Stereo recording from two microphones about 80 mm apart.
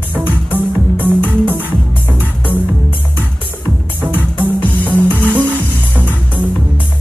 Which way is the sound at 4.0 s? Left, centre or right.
Right.